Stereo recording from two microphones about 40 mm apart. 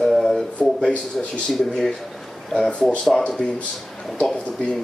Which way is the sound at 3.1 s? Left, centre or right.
Centre.